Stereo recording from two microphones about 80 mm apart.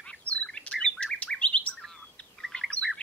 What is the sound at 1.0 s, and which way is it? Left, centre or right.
Bird, centre.